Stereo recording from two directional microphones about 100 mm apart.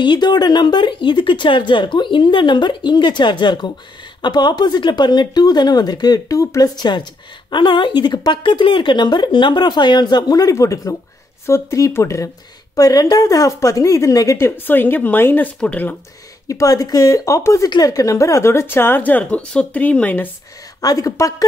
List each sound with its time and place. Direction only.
0.0 s speech: 50° left (ahead or behind)
6.8 s speech: 50° left (ahead or behind)
14.7 s speech: 20° left (ahead or behind)
16.4 s speech: 35° left (ahead or behind); by 20.2 s 15° left (ahead or behind)
20.8 s speech: 35° left (ahead or behind)